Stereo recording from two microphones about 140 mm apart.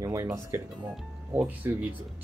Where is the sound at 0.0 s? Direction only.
20° right (ahead or behind).